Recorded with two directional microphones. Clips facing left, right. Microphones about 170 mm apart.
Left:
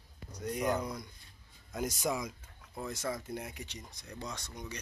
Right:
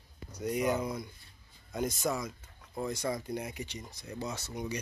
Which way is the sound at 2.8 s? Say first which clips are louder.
Right 3 dB; centre (ahead or behind).